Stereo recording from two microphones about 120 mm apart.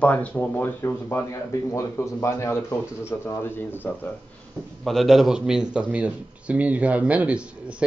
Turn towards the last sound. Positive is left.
turn(degrees=-10)  # may be behind; listen again after turning